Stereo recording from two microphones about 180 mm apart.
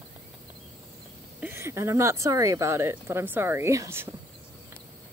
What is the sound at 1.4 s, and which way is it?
Speech, 15° right (ahead or behind).